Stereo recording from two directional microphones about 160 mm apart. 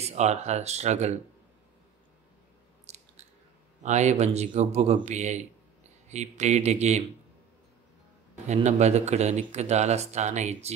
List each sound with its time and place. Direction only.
0.0 s speech: 45° right (ahead or behind)
2.9 s chewing: 45° right (ahead or behind)
3.8 s speech: 45° right (ahead or behind)
8.5 s speech: 45° right (ahead or behind)